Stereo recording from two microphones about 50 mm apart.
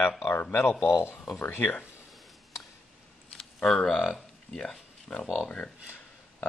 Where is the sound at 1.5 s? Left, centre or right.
Left.